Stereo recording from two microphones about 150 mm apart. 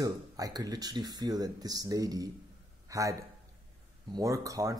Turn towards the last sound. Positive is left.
turn(degrees=-20)  # may be behind; listen again after turning